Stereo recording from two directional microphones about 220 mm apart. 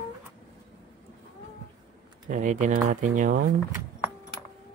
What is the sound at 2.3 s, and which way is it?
Speech, 35° right (ahead or behind).